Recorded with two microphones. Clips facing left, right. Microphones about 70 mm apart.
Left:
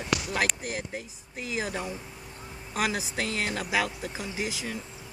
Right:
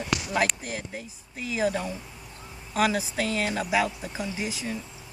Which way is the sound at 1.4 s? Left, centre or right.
Left.